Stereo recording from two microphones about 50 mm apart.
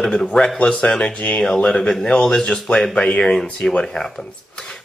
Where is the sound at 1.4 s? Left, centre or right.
Centre.